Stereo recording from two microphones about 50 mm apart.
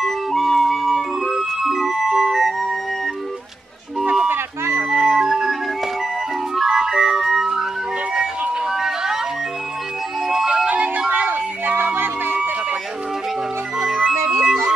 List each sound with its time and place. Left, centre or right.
0.0 s music: centre
4.0 s a sound: centre
4.3 s music: right
4.8 s music: centre
8.6 s a sound: centre
10.2 s music: centre
10.7 s music: right
13.7 s music: centre
14.1 s music: right
14.4 s music: centre